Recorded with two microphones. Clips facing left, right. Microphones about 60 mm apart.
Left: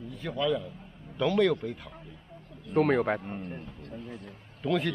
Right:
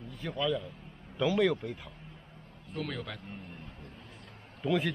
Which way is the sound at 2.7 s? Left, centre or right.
Left.